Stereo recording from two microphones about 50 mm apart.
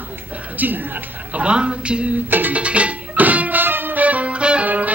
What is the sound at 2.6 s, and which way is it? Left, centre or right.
Music, right.